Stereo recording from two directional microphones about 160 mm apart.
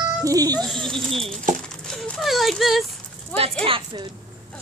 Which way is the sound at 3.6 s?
30° right (ahead or behind).